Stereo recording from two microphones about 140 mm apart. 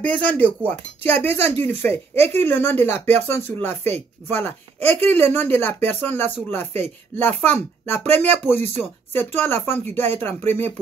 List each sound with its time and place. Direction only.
0.0 s speech: 10° left (ahead or behind)
8.5 s speech: 50° right (ahead or behind)
9.1 s speech: 15° left (ahead or behind)